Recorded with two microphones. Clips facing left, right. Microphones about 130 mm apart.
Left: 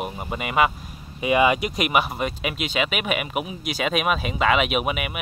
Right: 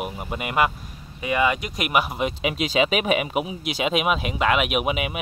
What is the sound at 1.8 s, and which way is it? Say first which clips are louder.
Speech: right 1 dB; centre (ahead or behind).